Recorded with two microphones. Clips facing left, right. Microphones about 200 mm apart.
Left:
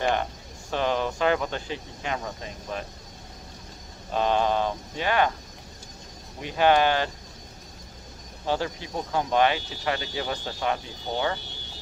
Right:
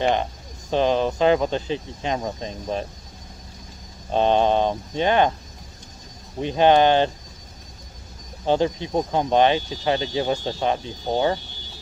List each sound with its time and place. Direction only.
0.0 s speech: 20° right (ahead or behind)
4.1 s speech: 25° right (ahead or behind)
6.4 s speech: 25° right (ahead or behind)
8.5 s speech: 20° right (ahead or behind)